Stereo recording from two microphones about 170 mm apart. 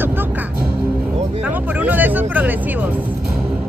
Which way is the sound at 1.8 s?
10° right (ahead or behind).